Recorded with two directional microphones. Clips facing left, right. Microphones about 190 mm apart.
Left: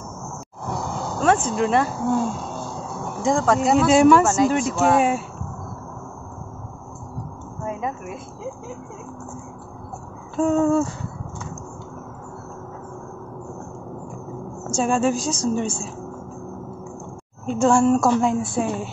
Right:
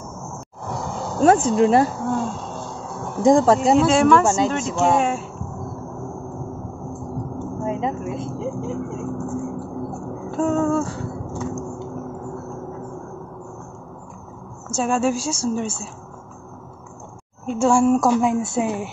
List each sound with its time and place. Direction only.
0.7 s roaring cats: centre (ahead or behind)
1.2 s speech: 35° right (ahead or behind)
2.0 s a woman's voice: centre (ahead or behind)
3.2 s speech: 40° right (ahead or behind)
3.5 s a woman's voice: centre (ahead or behind)
7.6 s speech: 25° right (ahead or behind)
10.4 s a woman's voice: centre (ahead or behind)
14.7 s a woman's voice: 5° right (ahead or behind)
17.5 s a woman's voice: 10° right (ahead or behind)
18.4 s speech: 20° right (ahead or behind)